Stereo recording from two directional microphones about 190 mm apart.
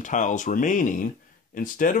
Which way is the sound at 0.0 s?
40° left (ahead or behind).